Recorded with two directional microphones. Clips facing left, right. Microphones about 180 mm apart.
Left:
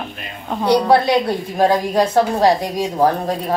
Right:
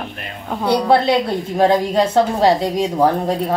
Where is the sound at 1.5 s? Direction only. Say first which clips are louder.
Right 1 dB; 25° right (ahead or behind).